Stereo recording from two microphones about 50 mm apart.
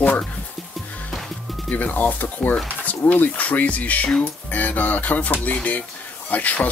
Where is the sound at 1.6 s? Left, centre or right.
Left.